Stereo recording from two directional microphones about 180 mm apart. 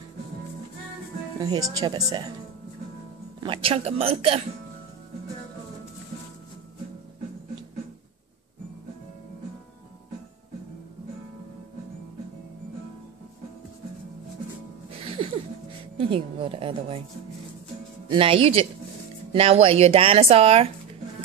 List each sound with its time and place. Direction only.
1.4 s a woman's voice: 20° right (ahead or behind)
3.3 s speech: 30° right (ahead or behind)
15.0 s music: 30° right (ahead or behind)
16.0 s a woman's voice: 30° right (ahead or behind)
18.0 s a woman's voice: 30° right (ahead or behind)